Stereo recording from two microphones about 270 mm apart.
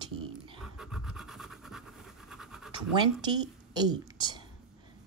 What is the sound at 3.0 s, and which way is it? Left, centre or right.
Speech, centre.